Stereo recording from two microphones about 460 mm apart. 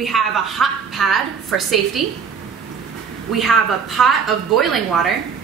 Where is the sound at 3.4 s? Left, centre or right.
Centre.